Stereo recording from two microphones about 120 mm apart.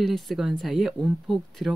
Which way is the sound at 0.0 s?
Centre (ahead or behind).